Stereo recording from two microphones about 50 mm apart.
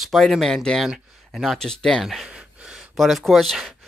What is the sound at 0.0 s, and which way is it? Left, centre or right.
Speech, centre.